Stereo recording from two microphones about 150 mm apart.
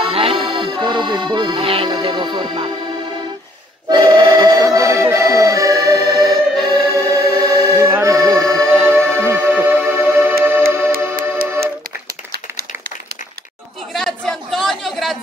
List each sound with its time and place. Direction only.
0.1 s accordion: 35° right (ahead or behind)
3.9 s accordion: 25° right (ahead or behind)
6.7 s music: 25° right (ahead or behind)
8.5 s music: 5° left (ahead or behind)
8.8 s music: 15° right (ahead or behind)
13.9 s chatter: 5° left (ahead or behind)